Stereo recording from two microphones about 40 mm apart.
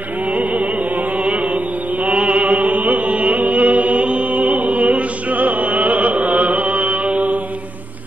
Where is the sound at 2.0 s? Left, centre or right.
Right.